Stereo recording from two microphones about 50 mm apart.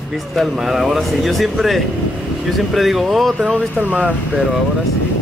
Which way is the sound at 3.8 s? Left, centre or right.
Right.